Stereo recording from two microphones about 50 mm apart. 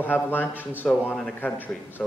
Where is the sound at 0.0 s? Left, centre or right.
Left.